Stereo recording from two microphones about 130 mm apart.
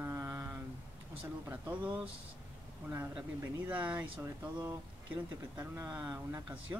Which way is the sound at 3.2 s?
10° right (ahead or behind).